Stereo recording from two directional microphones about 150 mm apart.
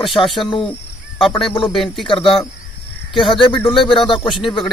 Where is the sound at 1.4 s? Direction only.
35° left (ahead or behind).